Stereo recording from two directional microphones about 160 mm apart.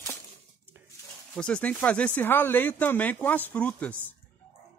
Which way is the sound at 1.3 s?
5° left (ahead or behind).